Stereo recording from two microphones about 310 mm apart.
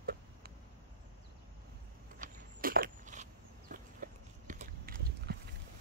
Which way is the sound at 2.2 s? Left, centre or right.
Right.